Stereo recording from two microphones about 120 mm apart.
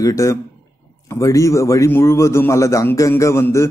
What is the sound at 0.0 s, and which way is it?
A man's voice, 25° left (ahead or behind).